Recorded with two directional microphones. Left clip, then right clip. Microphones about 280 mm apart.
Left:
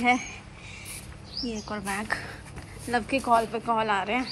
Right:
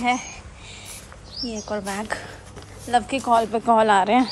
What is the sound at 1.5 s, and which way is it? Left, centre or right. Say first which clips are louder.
Speech: right 5 dB; centre.